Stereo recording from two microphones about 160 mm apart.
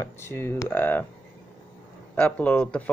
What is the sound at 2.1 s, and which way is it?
Speech, 10° left (ahead or behind).